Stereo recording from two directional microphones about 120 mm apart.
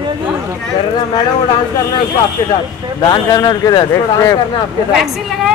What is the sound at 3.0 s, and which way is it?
Speech, 35° left (ahead or behind).